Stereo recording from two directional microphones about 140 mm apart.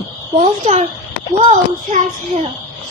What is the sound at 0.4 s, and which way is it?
A child's voice, 55° right (ahead or behind).